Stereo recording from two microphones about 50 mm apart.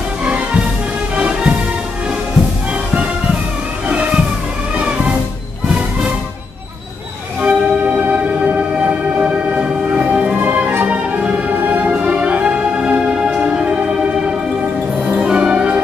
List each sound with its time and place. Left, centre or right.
1.1 s music: right
4.7 s music: right
7.4 s music: right
11.9 s music: right